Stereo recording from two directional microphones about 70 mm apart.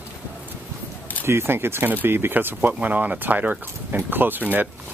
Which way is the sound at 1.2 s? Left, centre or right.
Right.